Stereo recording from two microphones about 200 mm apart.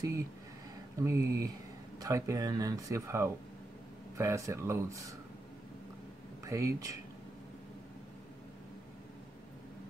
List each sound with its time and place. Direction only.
0.9 s speech: 15° right (ahead or behind)
6.4 s speech: 15° right (ahead or behind)